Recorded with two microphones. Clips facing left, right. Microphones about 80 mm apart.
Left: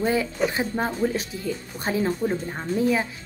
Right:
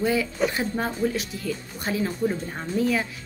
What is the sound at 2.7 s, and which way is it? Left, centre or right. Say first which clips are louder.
Speech: left 1 dB; left.